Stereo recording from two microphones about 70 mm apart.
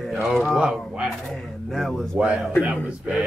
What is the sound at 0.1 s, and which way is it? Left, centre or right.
Speech, centre.